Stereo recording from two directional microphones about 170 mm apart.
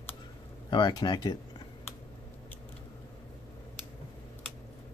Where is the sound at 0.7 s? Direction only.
25° left (ahead or behind).